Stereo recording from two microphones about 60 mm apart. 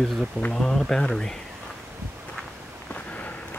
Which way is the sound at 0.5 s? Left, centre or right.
Centre.